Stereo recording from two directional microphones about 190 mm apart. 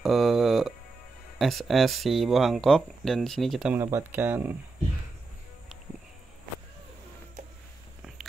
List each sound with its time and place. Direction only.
0.0 s music: centre (ahead or behind)
1.4 s speech: centre (ahead or behind)
3.7 s speech: 10° right (ahead or behind)